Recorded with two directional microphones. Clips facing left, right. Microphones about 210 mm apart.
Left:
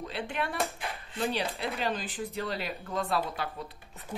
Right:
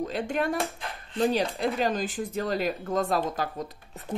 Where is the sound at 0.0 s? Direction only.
45° right (ahead or behind).